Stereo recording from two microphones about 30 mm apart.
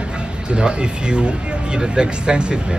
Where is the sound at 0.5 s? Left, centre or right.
Right.